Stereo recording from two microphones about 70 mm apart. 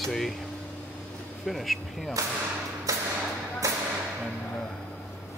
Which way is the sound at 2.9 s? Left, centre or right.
Right.